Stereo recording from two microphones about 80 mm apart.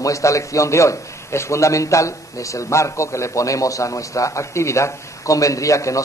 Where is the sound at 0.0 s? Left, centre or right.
Left.